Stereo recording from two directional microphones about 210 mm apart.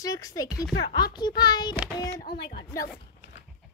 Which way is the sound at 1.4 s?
20° left (ahead or behind).